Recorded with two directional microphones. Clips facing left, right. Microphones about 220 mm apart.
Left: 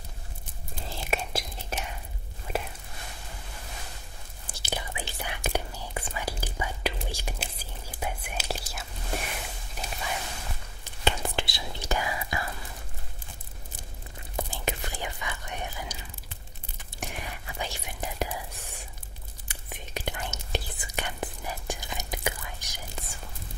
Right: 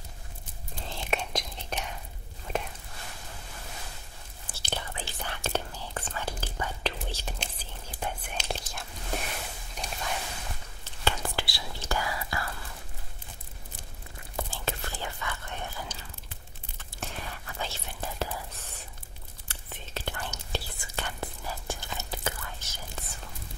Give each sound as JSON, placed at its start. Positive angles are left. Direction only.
{"t": 0.8, "sound": "whispering", "side_deg": 5}
{"t": 4.6, "sound": "whispering", "side_deg": 10}
{"t": 10.8, "sound": "whispering", "side_deg": 20}
{"t": 14.3, "sound": "whispering", "side_deg": 15}